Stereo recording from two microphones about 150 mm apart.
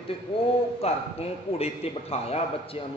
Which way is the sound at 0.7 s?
40° left (ahead or behind).